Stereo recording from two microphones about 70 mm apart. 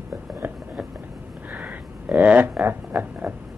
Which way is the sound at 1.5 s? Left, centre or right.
Right.